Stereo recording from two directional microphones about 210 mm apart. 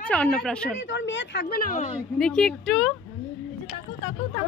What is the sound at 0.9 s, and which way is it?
Speech, 60° left (ahead or behind).